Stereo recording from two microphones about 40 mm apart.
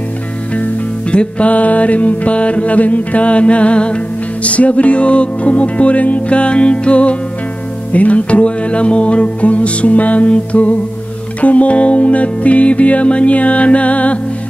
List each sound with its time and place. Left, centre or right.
1.1 s music: left